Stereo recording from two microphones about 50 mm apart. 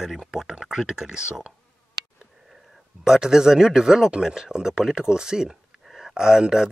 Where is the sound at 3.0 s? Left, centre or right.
Centre.